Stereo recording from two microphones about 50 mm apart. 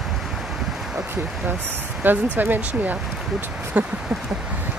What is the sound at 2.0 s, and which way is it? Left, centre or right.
Speech, right.